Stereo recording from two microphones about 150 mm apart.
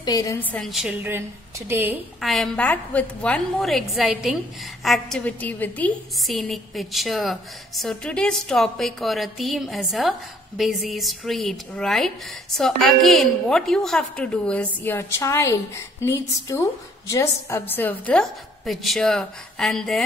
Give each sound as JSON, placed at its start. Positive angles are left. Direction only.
{"t": 0.0, "sound": "a woman's voice", "side_deg": 25}
{"t": 0.4, "sound": "a woman's voice", "side_deg": 10}
{"t": 0.7, "sound": "a woman's voice", "side_deg": 0}
{"t": 1.7, "sound": "a woman's voice", "side_deg": -15}
{"t": 2.1, "sound": "a woman's voice", "side_deg": 0}
{"t": 6.1, "sound": "a woman's voice", "side_deg": 0}